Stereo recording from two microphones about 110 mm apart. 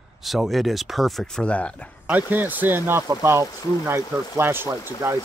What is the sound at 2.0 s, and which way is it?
Speech, 15° right (ahead or behind).